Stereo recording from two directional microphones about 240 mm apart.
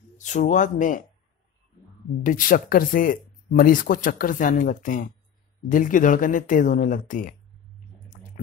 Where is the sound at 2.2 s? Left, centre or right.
Left.